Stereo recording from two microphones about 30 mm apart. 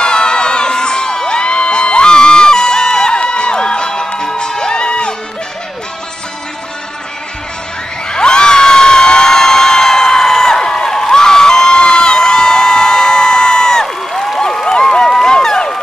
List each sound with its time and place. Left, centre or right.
0.0 s crowd: left
4.2 s music: left
8.1 s crowd: left
14.4 s a sound: left